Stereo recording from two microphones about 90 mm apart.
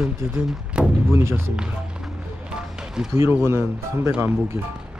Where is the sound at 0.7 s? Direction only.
10° right (ahead or behind).